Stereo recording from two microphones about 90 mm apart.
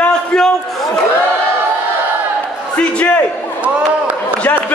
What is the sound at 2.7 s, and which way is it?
Speech, 15° left (ahead or behind).